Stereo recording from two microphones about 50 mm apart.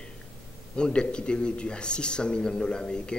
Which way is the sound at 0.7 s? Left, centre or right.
Centre.